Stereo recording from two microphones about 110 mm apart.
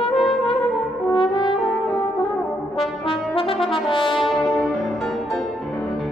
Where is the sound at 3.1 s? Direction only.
55° left (ahead or behind).